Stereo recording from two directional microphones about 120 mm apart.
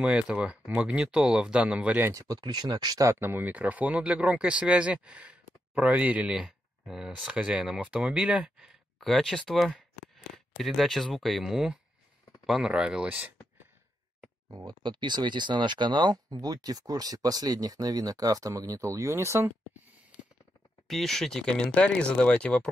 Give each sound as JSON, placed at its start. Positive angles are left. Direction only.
{"t": 0.0, "sound": "speech", "side_deg": -10}
{"t": 2.0, "sound": "speech", "side_deg": -20}
{"t": 2.2, "sound": "speech", "side_deg": -35}
{"t": 14.5, "sound": "speech", "side_deg": -35}
{"t": 20.8, "sound": "speech", "side_deg": 0}